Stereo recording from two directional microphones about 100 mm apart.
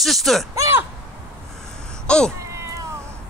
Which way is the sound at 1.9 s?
5° left (ahead or behind).